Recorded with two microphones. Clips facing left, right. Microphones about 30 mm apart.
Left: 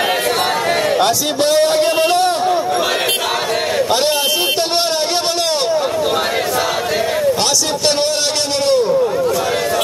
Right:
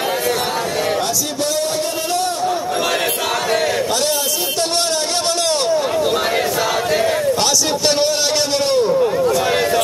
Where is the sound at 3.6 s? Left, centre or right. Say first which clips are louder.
Left 1 dB; centre.